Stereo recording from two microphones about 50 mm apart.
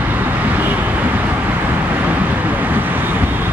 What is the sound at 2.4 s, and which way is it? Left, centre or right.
Vehicle, right.